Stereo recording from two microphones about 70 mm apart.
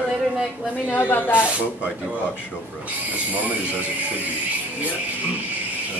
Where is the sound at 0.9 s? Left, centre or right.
Left.